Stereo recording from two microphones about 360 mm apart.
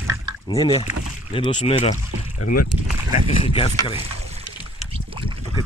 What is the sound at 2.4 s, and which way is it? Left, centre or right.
Speech, left.